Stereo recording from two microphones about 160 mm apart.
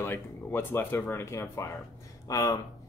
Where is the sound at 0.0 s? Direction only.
15° left (ahead or behind).